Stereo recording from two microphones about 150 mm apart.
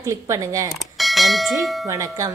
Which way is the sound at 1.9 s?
20° right (ahead or behind).